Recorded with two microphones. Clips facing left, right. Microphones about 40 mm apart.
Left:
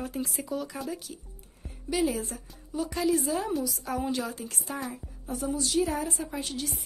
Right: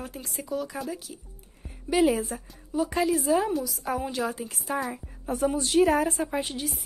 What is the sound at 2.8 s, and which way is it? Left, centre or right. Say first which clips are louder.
A woman's voice: right 2 dB; centre.